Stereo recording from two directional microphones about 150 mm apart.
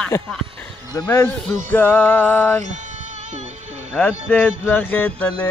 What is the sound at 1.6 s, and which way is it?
Speech, 10° left (ahead or behind).